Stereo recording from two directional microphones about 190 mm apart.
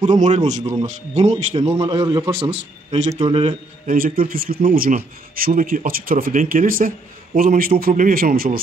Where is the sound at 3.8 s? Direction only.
50° right (ahead or behind).